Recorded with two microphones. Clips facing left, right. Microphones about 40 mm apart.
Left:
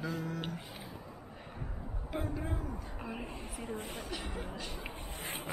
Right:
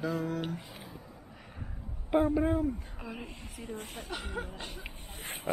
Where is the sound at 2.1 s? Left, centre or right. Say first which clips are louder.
Right 12 dB; right.